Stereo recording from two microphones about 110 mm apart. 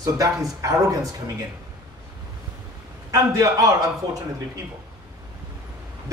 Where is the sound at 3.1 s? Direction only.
30° right (ahead or behind).